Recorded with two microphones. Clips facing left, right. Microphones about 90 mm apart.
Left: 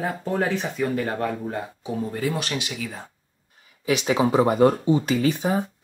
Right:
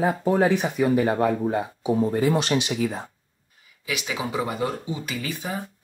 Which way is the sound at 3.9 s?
35° left (ahead or behind).